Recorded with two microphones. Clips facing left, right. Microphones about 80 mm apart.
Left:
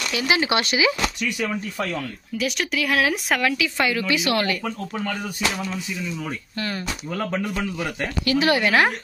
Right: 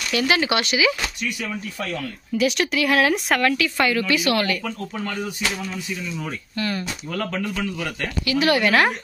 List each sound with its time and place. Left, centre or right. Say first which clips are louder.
0.1 s speech: right 2 dB; centre
0.5 s speech: even; left
2.3 s speech: right 4 dB; centre; by 4.6 s left
6.5 s speech: right 5 dB; left
7.1 s speech: left 1 dB; centre